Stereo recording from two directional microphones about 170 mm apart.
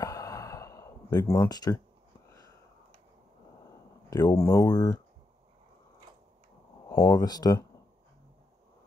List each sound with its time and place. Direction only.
0.0 s sigh: 20° left (ahead or behind)
4.1 s speech: 20° left (ahead or behind)
6.9 s speech: 20° left (ahead or behind)